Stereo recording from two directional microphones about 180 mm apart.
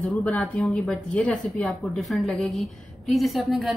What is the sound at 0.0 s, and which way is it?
A woman's voice, 5° left (ahead or behind).